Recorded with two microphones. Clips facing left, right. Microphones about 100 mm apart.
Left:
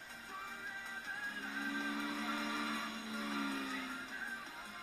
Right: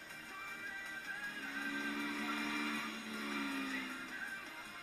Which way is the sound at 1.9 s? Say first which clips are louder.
Left 1 dB; 15° left (ahead or behind).